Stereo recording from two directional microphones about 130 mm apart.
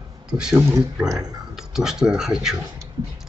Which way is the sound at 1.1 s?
5° right (ahead or behind).